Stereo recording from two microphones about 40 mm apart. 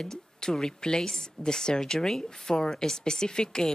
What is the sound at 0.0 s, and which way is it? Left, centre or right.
Speech, centre.